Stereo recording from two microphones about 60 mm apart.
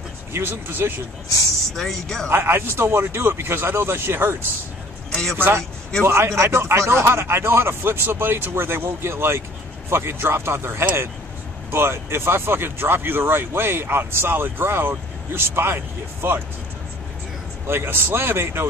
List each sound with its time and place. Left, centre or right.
0.3 s speech: right
1.7 s speech: centre
2.2 s speech: right
5.1 s speech: centre
6.0 s speech: right
17.6 s speech: right